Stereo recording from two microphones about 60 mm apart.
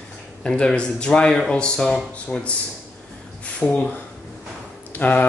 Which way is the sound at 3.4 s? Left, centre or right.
Left.